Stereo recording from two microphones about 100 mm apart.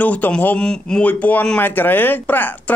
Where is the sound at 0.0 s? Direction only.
15° left (ahead or behind).